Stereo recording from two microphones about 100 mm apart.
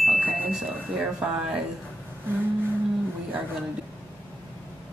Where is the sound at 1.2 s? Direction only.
15° right (ahead or behind).